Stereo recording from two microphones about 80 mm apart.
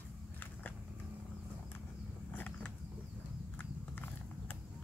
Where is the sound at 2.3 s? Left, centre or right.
Left.